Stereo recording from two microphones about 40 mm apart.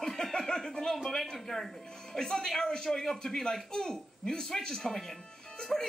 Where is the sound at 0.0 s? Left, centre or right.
Centre.